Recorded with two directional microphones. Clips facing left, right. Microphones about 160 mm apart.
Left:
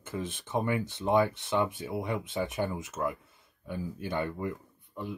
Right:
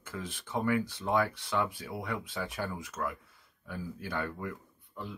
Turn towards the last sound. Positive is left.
turn(degrees=20)  # may be behind; listen again after turning